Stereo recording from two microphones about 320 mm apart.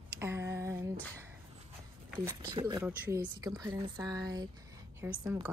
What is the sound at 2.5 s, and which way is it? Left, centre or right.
Speech, centre.